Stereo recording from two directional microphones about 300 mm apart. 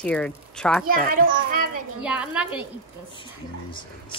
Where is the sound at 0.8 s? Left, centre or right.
Right.